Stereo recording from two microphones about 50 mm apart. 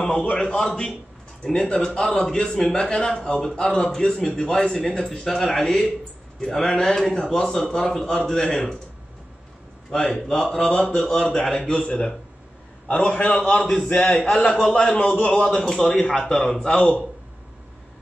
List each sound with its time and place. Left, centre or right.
0.0 s speech: centre
9.8 s speech: centre
11.5 s a man's voice: left
15.4 s speech: centre